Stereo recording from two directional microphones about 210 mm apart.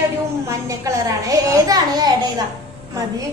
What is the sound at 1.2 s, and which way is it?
Speech, 15° right (ahead or behind).